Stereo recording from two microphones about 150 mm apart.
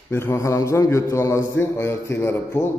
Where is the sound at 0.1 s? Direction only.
15° left (ahead or behind).